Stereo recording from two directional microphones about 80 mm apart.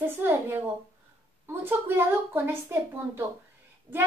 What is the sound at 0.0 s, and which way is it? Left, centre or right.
A woman's voice, right.